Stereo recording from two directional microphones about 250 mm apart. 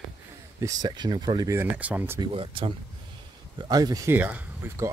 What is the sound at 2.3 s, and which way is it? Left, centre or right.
Speech, right.